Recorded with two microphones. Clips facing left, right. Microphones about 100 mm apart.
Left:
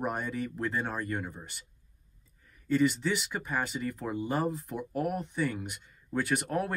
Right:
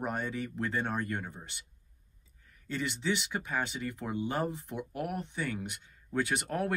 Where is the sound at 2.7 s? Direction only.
5° left (ahead or behind).